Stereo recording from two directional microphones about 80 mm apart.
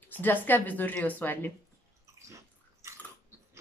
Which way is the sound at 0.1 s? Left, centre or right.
Left.